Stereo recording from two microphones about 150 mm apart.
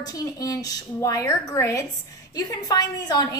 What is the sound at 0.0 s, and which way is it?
Speech, 25° left (ahead or behind).